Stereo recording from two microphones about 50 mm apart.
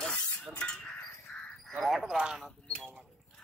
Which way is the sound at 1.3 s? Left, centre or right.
Centre.